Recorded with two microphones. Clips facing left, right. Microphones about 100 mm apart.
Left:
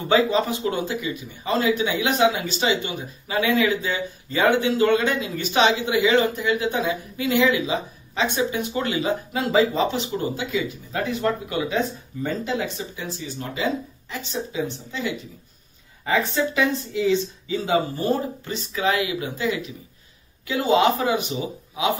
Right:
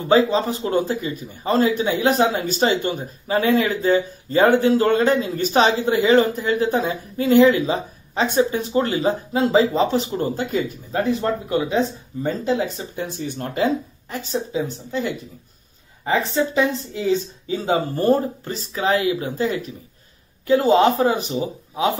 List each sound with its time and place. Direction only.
0.1 s a man's voice: 35° right (ahead or behind)
10.9 s a man's voice: 35° right (ahead or behind)
16.1 s a man's voice: 30° right (ahead or behind)